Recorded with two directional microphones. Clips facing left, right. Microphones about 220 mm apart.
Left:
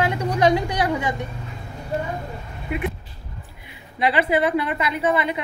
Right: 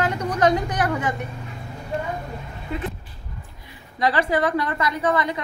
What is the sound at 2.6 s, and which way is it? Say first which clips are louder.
Vehicle: left 3 dB; 15° left (ahead or behind).